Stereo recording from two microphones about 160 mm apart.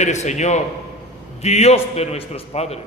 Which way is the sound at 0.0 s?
45° left (ahead or behind).